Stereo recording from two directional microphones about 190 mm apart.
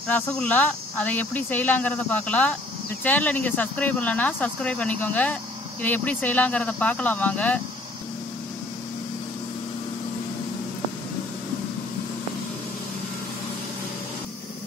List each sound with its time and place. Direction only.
0.1 s speech: 5° left (ahead or behind)